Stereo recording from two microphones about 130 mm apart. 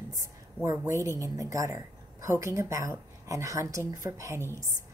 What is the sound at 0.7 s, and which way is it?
Speech, 25° right (ahead or behind).